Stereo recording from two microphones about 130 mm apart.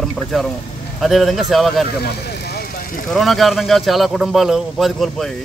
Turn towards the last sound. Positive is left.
turn(degrees=0)  # may be behind; listen again after turning